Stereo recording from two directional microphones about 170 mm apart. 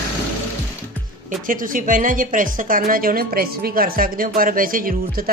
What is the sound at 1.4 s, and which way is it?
A woman's voice, 55° right (ahead or behind).